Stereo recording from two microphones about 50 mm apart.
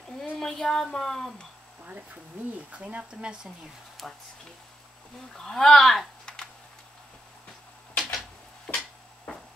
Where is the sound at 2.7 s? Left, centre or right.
Right.